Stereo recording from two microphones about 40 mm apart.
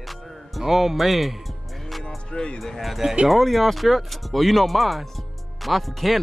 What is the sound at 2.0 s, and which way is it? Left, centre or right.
Music, left.